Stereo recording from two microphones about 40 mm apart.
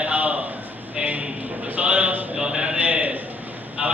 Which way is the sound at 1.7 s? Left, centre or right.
Right.